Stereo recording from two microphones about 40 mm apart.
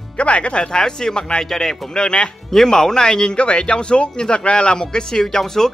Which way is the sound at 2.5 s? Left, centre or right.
Centre.